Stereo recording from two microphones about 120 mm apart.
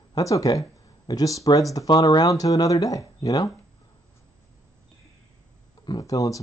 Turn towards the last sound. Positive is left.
turn(degrees=30)  # may be behind; listen again after turning